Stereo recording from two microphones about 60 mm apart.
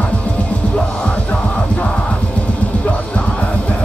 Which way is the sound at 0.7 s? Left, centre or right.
Left.